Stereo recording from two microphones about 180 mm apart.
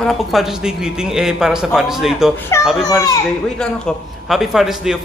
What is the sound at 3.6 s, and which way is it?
Speech, centre (ahead or behind).